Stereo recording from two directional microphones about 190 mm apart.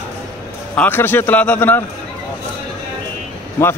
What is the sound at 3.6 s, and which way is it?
Speech, 10° left (ahead or behind).